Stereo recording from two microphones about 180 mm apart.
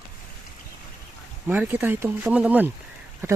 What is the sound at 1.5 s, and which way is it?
Speech, 10° right (ahead or behind).